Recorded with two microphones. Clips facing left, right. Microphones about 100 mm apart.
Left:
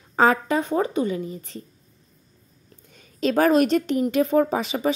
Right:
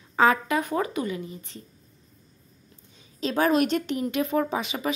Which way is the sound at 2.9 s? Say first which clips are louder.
Left 6 dB; 55° left (ahead or behind).